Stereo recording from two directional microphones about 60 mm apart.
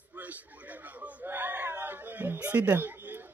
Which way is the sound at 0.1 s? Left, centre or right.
Right.